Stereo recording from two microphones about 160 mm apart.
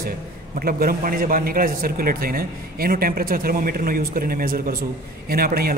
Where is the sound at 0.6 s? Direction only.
65° right (ahead or behind).